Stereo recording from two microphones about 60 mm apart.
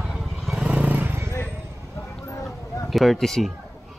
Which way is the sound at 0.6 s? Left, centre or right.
Right.